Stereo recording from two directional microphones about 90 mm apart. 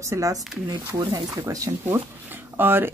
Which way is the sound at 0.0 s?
35° right (ahead or behind).